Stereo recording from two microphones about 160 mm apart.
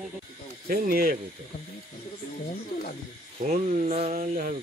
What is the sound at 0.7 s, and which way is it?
Speech, 70° right (ahead or behind).